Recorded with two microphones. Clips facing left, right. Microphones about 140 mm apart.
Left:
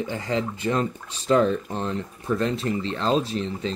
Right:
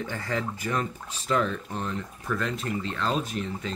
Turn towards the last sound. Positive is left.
turn(degrees=30)  # may be behind; listen again after turning